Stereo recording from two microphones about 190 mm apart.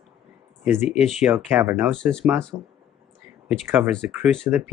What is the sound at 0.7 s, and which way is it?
Speech, 35° left (ahead or behind).